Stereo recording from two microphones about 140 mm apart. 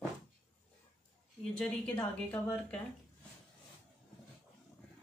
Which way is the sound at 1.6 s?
10° left (ahead or behind).